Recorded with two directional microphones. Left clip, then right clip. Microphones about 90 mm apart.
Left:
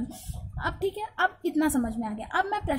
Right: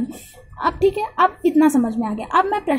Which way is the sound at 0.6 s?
15° right (ahead or behind).